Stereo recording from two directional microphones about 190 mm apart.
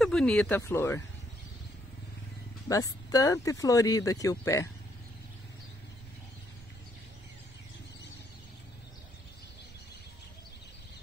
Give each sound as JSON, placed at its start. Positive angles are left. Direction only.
{"t": 0.0, "sound": "speech", "side_deg": 0}
{"t": 2.7, "sound": "speech", "side_deg": 20}